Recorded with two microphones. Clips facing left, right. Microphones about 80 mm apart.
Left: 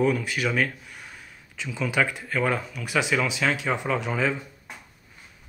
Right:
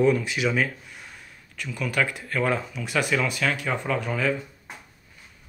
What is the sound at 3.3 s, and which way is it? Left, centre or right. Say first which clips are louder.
Speech: left 1 dB; centre.